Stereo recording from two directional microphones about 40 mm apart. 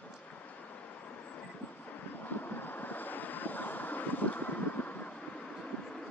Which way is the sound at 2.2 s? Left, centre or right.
Left.